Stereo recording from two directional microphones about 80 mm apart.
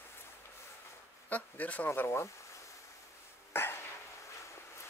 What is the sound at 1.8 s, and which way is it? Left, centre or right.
Speech, left.